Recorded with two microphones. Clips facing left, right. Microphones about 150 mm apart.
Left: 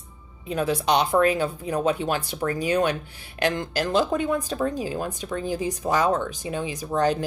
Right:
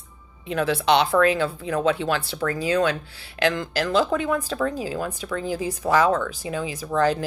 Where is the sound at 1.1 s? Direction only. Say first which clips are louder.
Right 1 dB; 20° left (ahead or behind).